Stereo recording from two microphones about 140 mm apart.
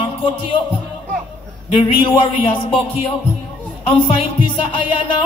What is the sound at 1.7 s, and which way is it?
Music, 40° left (ahead or behind).